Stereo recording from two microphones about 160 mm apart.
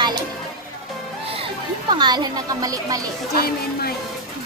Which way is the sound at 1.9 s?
25° right (ahead or behind).